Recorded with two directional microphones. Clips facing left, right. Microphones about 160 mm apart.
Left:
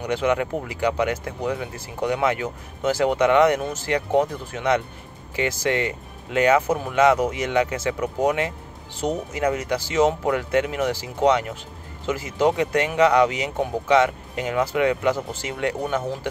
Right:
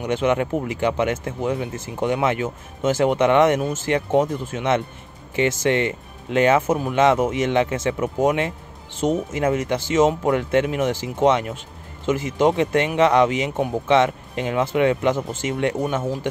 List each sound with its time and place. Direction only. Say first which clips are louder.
0.0 s speech: right 2 dB; 20° right (ahead or behind)